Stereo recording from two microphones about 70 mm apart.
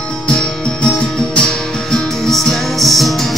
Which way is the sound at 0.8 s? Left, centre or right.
Centre.